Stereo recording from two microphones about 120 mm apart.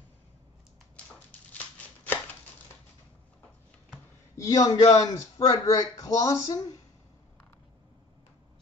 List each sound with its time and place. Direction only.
4.4 s a man's voice: 30° left (ahead or behind)